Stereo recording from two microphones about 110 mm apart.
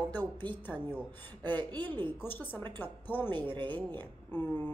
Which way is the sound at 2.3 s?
20° left (ahead or behind).